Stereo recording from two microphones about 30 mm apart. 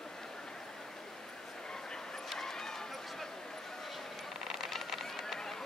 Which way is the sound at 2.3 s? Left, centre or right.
Centre.